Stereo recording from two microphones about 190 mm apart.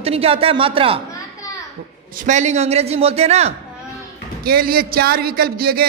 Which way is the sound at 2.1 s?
40° right (ahead or behind).